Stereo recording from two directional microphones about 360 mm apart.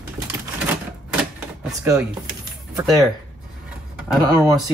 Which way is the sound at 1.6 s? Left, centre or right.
Centre.